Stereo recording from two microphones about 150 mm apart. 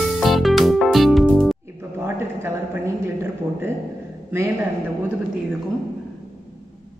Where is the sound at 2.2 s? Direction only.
15° right (ahead or behind).